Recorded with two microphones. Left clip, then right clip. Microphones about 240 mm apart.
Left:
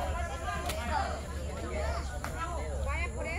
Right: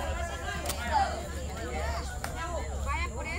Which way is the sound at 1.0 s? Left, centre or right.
Right.